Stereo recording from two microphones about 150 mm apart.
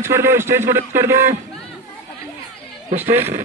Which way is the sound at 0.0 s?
15° right (ahead or behind).